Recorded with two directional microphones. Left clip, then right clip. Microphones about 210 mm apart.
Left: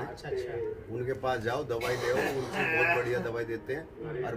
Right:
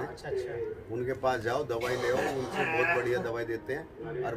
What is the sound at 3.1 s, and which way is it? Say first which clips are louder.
Speech: right 1 dB; 15° right (ahead or behind).